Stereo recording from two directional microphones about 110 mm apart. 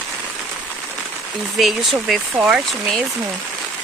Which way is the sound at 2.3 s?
15° right (ahead or behind).